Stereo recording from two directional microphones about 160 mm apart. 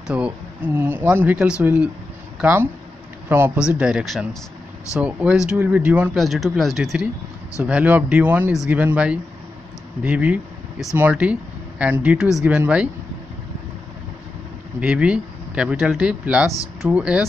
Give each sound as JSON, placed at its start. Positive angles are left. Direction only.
{"t": 0.0, "sound": "speech", "side_deg": -10}
{"t": 14.8, "sound": "speech", "side_deg": -5}